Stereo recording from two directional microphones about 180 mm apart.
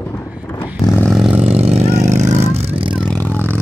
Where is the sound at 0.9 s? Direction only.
Centre (ahead or behind).